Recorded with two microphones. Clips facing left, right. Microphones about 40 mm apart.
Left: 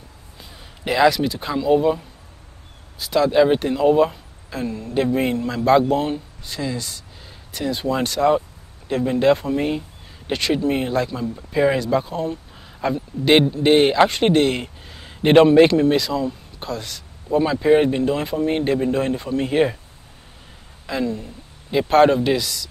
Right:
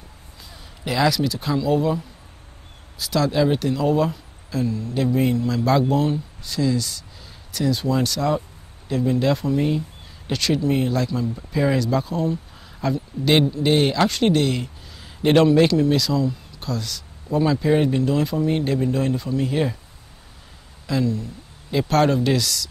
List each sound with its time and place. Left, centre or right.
0.8 s speech: left
20.8 s speech: left